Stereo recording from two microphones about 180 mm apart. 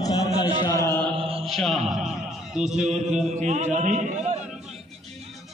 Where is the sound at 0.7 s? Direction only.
15° left (ahead or behind).